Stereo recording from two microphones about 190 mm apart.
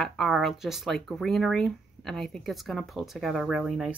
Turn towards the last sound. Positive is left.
turn(degrees=-5)  # may be behind; listen again after turning